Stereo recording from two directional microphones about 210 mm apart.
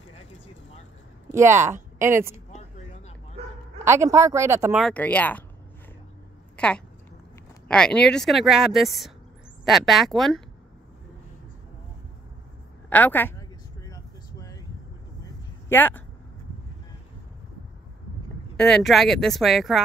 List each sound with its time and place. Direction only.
1.3 s speech: 10° right (ahead or behind)
3.4 s bow-wow: 30° right (ahead or behind)
3.8 s speech: 15° right (ahead or behind)
4.7 s speech: 5° left (ahead or behind)
6.5 s a sound: 5° left (ahead or behind)
7.6 s speech: 5° left (ahead or behind)
12.9 s a sound: 10° left (ahead or behind)
15.7 s speech: 10° left (ahead or behind)
18.6 s speech: centre (ahead or behind)